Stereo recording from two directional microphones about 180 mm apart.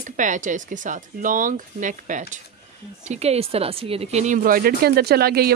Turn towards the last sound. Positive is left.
turn(degrees=-60)  # may be behind; listen again after turning